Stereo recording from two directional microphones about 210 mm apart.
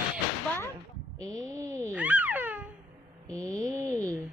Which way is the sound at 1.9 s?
5° right (ahead or behind).